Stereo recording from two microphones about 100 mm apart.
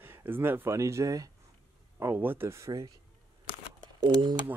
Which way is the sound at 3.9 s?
50° right (ahead or behind).